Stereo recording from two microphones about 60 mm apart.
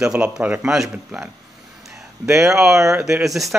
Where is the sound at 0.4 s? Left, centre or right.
Right.